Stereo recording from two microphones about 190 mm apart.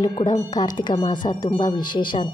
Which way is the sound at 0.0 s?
20° left (ahead or behind).